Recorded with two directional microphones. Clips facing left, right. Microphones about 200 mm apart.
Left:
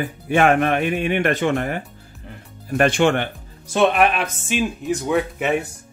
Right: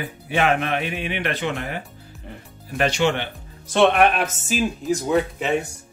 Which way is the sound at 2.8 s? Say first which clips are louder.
Left 4 dB; 50° left (ahead or behind).